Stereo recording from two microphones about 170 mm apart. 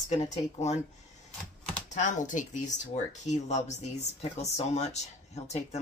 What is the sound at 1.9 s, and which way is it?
Speech, 45° left (ahead or behind).